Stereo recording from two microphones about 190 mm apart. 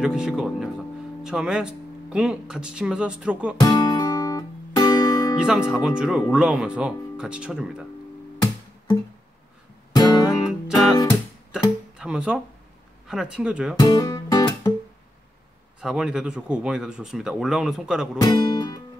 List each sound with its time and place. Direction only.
0.0 s speech: 5° right (ahead or behind)
3.6 s music: 20° left (ahead or behind)
5.7 s speech: 5° right (ahead or behind)
9.9 s guitar: 20° left (ahead or behind)
10.2 s music: centre (ahead or behind)
12.0 s speech: 5° right (ahead or behind)
13.7 s music: 20° left (ahead or behind)
15.8 s speech: 5° right (ahead or behind)
18.1 s speech: 20° left (ahead or behind)